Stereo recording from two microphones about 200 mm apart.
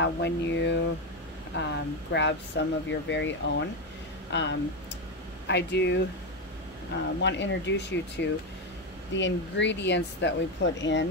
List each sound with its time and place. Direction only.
0.0 s speech: 60° left (ahead or behind)
7.2 s speech: 65° left (ahead or behind)